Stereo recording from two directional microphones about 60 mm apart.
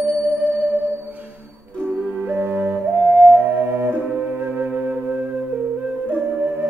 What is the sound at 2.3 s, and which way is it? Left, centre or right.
Music, right.